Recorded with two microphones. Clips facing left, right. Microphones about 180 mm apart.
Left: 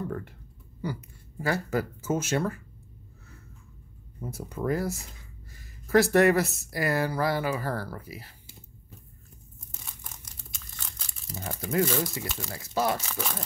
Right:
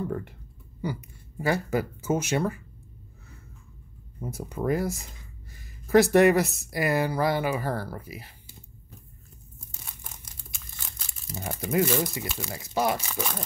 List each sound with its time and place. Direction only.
1.4 s speech: 15° right (ahead or behind)
4.2 s speech: 20° right (ahead or behind)
10.2 s crumpling: 5° right (ahead or behind)
11.3 s speech: 15° right (ahead or behind)